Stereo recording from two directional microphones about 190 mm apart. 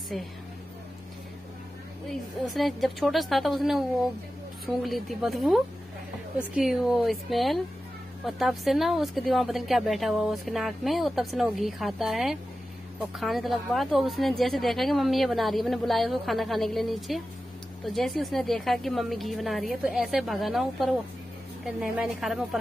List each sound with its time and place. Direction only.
0.1 s speech: centre (ahead or behind)
2.0 s speech: centre (ahead or behind)